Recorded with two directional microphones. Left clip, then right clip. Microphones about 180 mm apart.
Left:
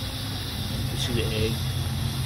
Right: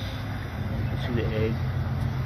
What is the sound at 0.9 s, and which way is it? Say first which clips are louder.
Speech: left 1 dB; 20° left (ahead or behind).